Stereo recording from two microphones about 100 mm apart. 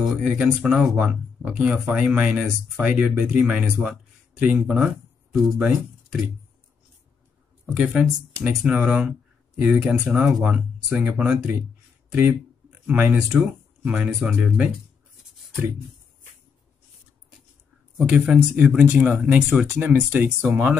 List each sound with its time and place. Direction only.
0.0 s speech: 5° right (ahead or behind)
0.9 s speech: 20° right (ahead or behind)
1.5 s speech: 10° right (ahead or behind)
7.7 s speech: 10° right (ahead or behind)
17.9 s speech: 15° right (ahead or behind)